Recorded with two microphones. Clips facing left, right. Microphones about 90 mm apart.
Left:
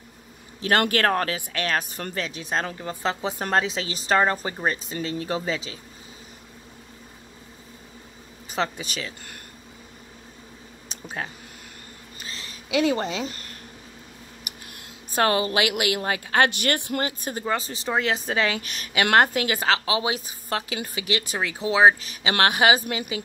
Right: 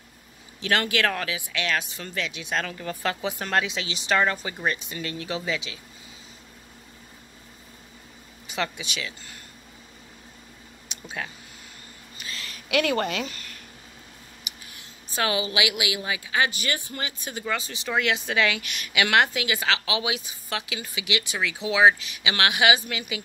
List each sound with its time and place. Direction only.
0.6 s speech: 40° left (ahead or behind)
8.5 s speech: 40° left (ahead or behind)
10.9 s a sound: 40° left (ahead or behind)
13.1 s speech: 35° left (ahead or behind)
14.4 s speech: 55° left (ahead or behind)